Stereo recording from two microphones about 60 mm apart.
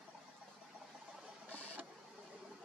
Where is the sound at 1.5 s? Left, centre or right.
Right.